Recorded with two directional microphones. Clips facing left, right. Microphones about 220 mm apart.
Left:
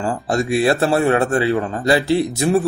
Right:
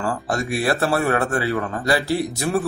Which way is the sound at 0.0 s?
25° left (ahead or behind).